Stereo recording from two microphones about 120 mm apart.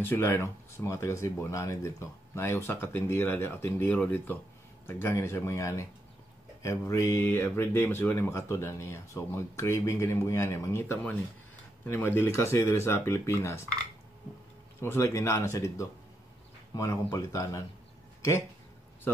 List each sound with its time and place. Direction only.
0.0 s speech: 20° left (ahead or behind)
14.8 s speech: 20° left (ahead or behind)